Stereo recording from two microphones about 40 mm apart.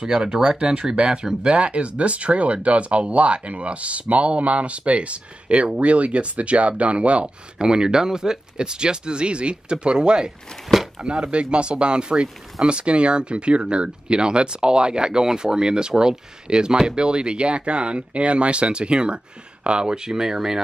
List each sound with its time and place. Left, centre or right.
0.0 s speech: centre